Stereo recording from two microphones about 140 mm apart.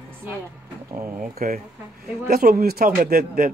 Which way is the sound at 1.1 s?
75° right (ahead or behind).